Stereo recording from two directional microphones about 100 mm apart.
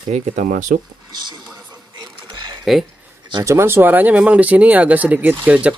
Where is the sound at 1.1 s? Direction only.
45° right (ahead or behind).